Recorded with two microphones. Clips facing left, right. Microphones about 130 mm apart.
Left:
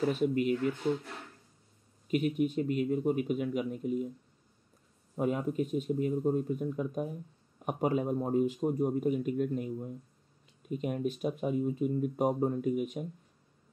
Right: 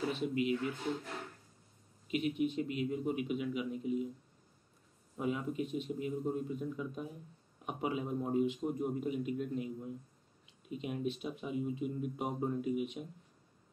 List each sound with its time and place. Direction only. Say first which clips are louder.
0.1 s speech: left 5 dB; 45° left (ahead or behind)
2.0 s speech: left 4 dB; 45° left (ahead or behind)
5.1 s speech: left 5 dB; 45° left (ahead or behind)